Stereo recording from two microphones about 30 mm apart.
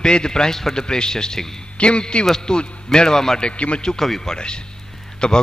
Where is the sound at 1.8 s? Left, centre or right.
Left; by 3.4 s centre.